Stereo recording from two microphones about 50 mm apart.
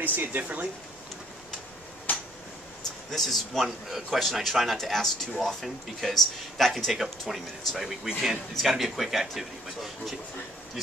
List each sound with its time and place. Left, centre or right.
0.0 s speech: right
2.1 s a sound: left
3.1 s speech: centre
6.9 s speech: centre